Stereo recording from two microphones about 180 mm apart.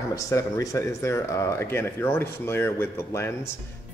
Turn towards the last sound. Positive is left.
turn(degrees=15)  # may be behind; listen again after turning